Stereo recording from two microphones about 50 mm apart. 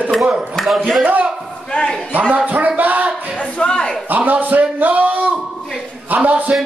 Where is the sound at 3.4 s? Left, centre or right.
Centre.